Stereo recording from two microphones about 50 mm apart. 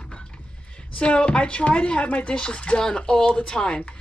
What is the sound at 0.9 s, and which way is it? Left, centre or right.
Speech, left.